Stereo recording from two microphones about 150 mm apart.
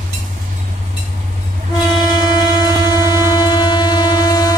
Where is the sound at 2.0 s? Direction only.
25° left (ahead or behind).